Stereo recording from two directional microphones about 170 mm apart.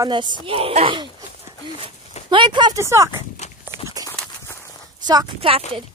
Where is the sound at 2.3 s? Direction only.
30° right (ahead or behind).